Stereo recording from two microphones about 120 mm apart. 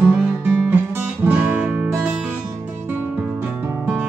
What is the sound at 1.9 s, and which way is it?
Music, 10° right (ahead or behind).